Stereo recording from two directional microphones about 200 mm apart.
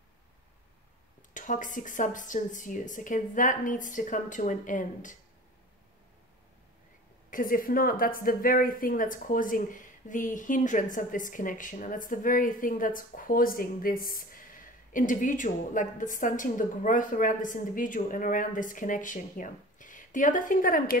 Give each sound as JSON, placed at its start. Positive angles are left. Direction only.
{"t": 1.3, "sound": "a woman's voice", "side_deg": 40}
{"t": 7.2, "sound": "a woman's voice", "side_deg": 45}